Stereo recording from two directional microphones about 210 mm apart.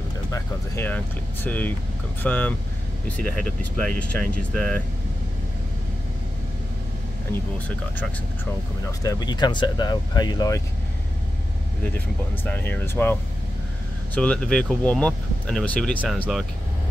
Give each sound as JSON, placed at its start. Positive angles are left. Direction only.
{"t": 0.3, "sound": "speech", "side_deg": 10}
{"t": 7.5, "sound": "speech", "side_deg": 5}
{"t": 9.0, "sound": "speech", "side_deg": 20}
{"t": 12.4, "sound": "speech", "side_deg": 10}